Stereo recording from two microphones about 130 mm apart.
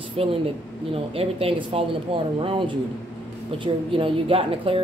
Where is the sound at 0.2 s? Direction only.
45° right (ahead or behind).